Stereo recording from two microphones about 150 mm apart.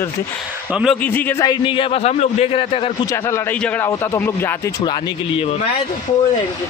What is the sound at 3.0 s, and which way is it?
A man's voice, 20° left (ahead or behind).